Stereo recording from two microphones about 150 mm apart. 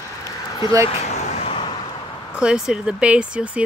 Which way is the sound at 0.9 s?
45° left (ahead or behind).